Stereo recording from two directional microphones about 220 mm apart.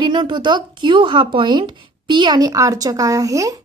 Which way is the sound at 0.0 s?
20° right (ahead or behind).